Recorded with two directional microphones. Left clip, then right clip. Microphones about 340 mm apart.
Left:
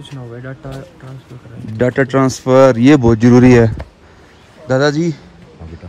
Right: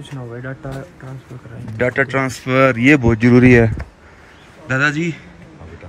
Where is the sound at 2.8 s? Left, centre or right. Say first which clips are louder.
Left 3 dB; right.